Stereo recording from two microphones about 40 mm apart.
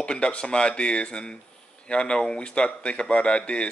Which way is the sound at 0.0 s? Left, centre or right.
Left.